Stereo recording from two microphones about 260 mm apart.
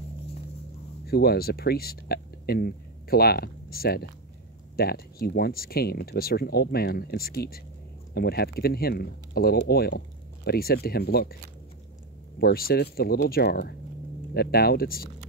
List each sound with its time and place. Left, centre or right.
1.0 s speech: left
12.4 s speech: left